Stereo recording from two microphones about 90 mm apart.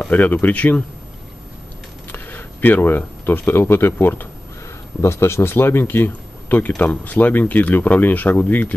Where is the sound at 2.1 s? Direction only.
20° left (ahead or behind).